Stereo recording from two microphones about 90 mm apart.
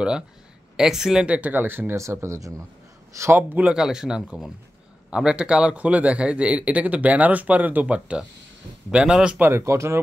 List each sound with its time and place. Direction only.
0.7 s speech: 5° right (ahead or behind); by 3.6 s 25° right (ahead or behind)
3.6 s speech: 5° right (ahead or behind)
9.4 s speech: 30° right (ahead or behind)